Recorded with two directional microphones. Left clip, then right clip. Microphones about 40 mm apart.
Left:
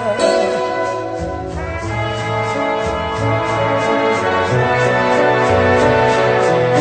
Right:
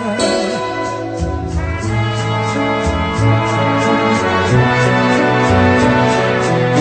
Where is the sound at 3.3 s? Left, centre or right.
Right.